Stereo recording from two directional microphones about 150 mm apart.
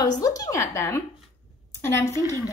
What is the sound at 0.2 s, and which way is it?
A woman's voice, 25° left (ahead or behind).